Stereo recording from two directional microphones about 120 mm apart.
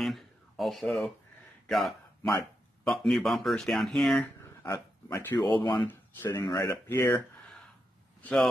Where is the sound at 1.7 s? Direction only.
Centre (ahead or behind).